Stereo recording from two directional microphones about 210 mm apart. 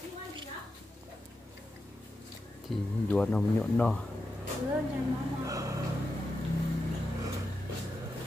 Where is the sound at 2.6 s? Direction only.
5° left (ahead or behind).